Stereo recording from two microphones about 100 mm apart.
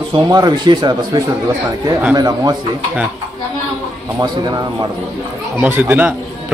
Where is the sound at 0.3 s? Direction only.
45° right (ahead or behind).